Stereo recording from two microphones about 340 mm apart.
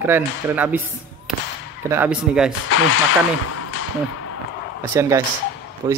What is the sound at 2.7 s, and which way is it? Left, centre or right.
Speech, left.